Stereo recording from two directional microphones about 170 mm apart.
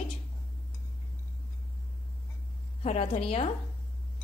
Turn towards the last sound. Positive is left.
turn(degrees=35)  # may be behind; listen again after turning